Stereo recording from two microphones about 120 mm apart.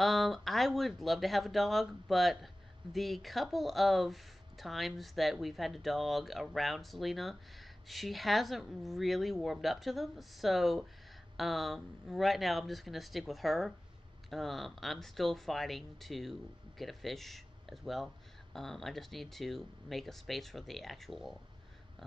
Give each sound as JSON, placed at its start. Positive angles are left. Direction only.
{"t": 0.0, "sound": "speech", "side_deg": 0}